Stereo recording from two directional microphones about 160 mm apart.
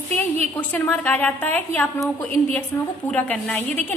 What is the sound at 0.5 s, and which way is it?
A woman's voice, 10° left (ahead or behind).